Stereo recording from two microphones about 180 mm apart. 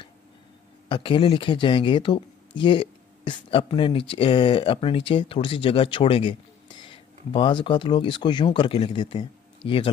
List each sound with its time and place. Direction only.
0.8 s speech: 30° left (ahead or behind)